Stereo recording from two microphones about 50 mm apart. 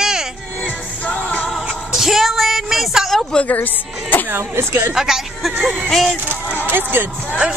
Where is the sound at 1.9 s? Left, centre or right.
Centre.